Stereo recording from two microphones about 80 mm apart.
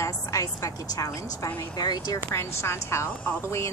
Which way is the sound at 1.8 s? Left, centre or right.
Left.